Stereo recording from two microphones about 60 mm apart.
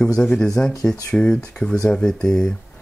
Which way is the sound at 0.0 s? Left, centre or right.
Centre.